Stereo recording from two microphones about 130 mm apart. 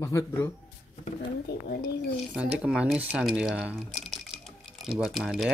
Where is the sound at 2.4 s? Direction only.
5° right (ahead or behind).